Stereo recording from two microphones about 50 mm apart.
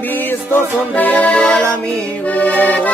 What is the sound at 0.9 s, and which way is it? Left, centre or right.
Music, left.